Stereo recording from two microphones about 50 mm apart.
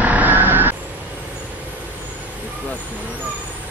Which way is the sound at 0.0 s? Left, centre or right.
Right.